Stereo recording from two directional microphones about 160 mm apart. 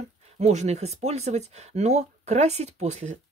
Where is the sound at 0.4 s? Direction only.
45° right (ahead or behind).